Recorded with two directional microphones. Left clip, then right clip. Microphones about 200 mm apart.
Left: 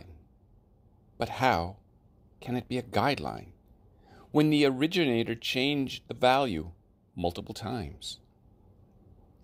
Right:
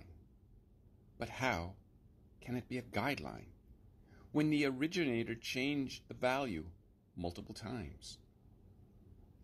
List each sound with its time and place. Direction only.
1.1 s speech: 40° left (ahead or behind)